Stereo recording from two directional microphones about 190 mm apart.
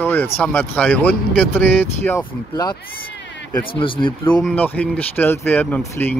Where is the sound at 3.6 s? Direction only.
25° left (ahead or behind).